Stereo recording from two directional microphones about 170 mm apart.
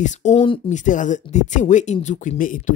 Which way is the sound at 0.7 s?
45° left (ahead or behind).